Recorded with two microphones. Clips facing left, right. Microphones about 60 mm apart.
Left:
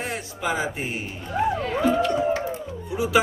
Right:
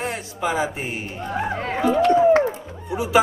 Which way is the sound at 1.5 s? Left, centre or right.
Right.